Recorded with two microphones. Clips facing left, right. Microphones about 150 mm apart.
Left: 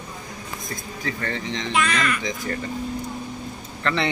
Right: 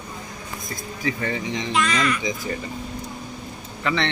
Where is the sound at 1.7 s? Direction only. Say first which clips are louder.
Right 1 dB; 60° left (ahead or behind).